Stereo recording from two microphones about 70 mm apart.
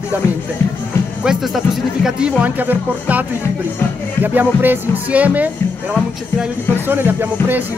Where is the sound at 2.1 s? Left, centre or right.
Centre.